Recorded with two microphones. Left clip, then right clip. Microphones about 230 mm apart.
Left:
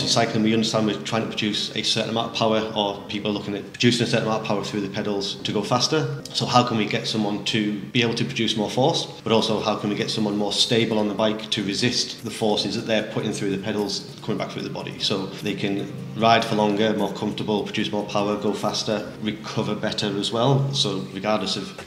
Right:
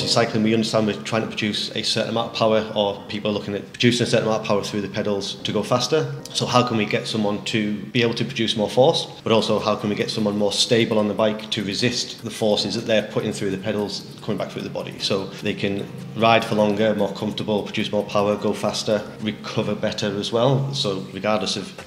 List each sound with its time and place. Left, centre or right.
0.0 s speech: right
15.0 s speech: right